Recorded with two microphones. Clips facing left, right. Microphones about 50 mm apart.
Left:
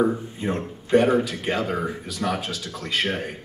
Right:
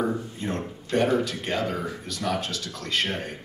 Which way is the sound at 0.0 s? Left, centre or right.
Centre.